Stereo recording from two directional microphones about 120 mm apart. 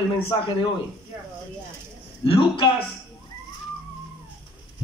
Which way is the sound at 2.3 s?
45° left (ahead or behind).